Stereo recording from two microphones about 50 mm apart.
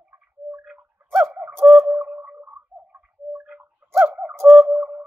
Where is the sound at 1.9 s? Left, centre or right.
Right.